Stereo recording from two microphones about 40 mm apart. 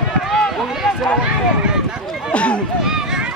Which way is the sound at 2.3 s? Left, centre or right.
Left.